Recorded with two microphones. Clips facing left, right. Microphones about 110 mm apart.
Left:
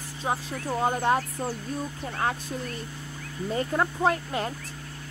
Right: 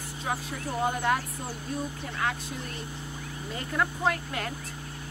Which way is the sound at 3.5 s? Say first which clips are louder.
Left 4 dB; 30° left (ahead or behind).